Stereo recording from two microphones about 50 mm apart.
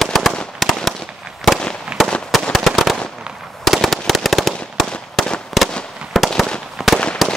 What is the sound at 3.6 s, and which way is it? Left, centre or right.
Fireworks, centre.